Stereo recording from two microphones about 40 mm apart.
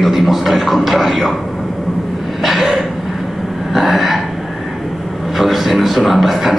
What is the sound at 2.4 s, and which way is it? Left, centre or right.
Speech, centre.